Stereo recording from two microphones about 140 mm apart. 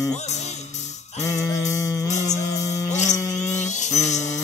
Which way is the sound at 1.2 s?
25° left (ahead or behind).